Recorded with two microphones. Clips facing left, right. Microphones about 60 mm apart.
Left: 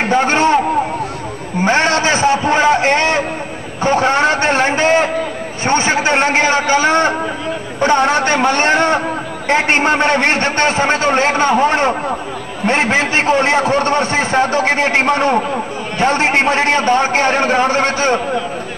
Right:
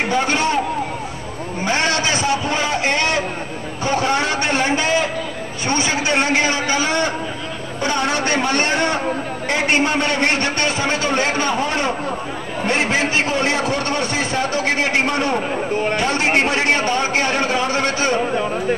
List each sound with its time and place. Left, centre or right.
0.1 s a man's voice: left
1.6 s a man's voice: left